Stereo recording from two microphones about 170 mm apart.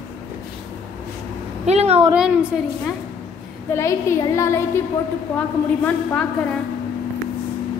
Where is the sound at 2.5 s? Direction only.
5° right (ahead or behind).